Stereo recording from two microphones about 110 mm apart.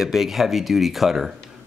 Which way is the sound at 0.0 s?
Centre (ahead or behind).